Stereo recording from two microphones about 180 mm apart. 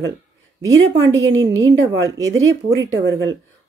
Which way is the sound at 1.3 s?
90° right.